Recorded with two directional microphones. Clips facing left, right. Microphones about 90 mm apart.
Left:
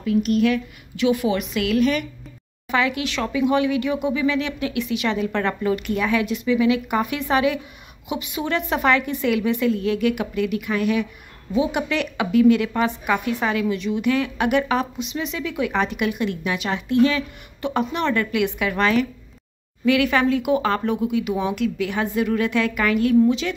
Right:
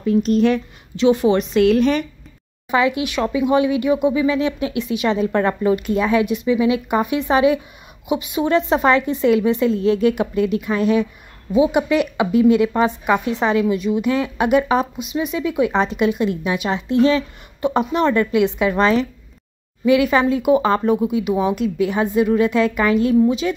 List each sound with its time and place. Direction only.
0.0 s a woman's voice: 35° right (ahead or behind)
2.7 s a woman's voice: 20° right (ahead or behind)